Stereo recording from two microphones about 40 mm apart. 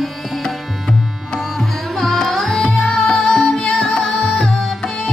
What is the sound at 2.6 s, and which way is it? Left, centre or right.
Music, centre.